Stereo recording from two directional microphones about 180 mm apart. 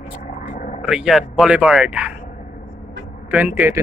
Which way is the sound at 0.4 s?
45° left (ahead or behind).